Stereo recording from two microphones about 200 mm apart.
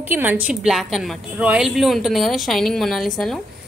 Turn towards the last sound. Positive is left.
turn(degrees=0)  # may be behind; listen again after turning